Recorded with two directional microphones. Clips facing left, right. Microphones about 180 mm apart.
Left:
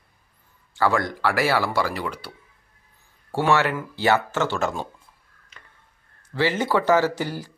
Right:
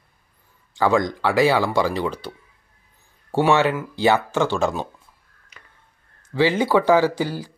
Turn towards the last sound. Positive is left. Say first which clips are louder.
# right 3 dB
turn(degrees=-10)  # may be behind; listen again after turning